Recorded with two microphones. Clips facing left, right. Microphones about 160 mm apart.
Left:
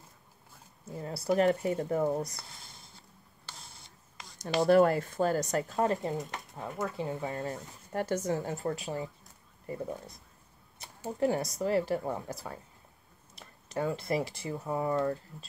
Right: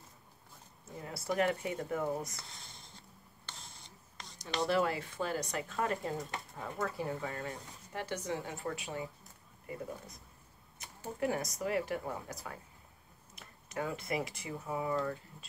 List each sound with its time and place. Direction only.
1.0 s speech: 35° left (ahead or behind)
4.6 s speech: 50° left (ahead or behind); by 7.5 s 25° left (ahead or behind)
7.9 s speech: 45° left (ahead or behind)
10.8 s a sound: 30° left (ahead or behind)
11.1 s speech: 30° left (ahead or behind)